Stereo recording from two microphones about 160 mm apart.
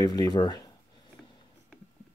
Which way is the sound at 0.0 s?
25° left (ahead or behind).